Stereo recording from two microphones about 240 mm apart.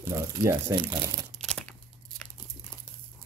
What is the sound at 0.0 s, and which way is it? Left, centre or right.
Speech, centre.